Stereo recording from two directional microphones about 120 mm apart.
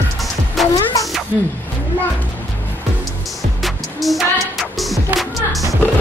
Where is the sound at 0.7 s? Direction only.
30° left (ahead or behind).